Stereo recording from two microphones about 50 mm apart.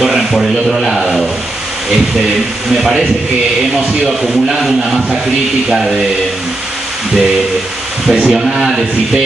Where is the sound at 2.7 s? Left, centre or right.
Centre.